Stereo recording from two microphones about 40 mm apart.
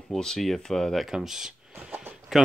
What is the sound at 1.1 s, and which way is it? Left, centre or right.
Speech, centre.